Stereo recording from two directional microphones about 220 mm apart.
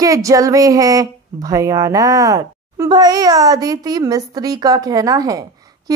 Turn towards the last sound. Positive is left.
turn(degrees=-15)  # may be behind; listen again after turning